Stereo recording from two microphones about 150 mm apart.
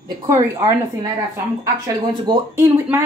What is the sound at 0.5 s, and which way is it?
Speech, 20° right (ahead or behind).